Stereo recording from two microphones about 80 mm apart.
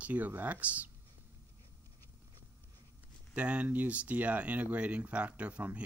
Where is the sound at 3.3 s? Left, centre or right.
Centre.